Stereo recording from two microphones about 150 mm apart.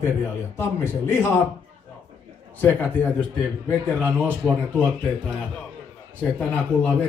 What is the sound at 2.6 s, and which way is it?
Speech, 10° left (ahead or behind).